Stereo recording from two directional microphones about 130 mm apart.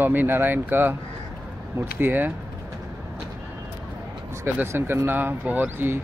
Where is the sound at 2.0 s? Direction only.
15° right (ahead or behind).